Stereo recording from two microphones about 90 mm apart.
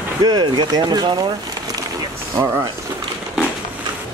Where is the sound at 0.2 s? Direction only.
55° right (ahead or behind).